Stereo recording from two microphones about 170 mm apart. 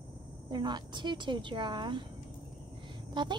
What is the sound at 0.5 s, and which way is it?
A woman's voice, 25° right (ahead or behind).